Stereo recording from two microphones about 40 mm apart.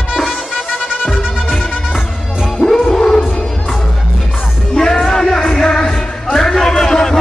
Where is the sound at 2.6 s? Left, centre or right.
Centre.